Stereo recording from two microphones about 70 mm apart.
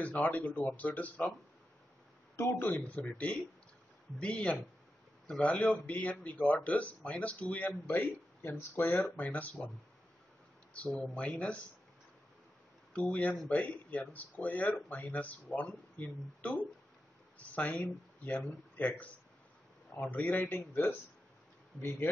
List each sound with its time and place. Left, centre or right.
0.0 s speech: left
2.6 s speech: left
10.7 s speech: centre
12.9 s speech: centre